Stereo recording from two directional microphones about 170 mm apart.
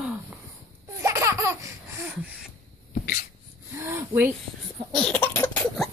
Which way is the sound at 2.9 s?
65° left (ahead or behind).